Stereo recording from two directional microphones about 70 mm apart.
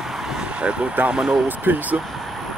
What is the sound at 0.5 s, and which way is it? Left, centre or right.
Speech, centre.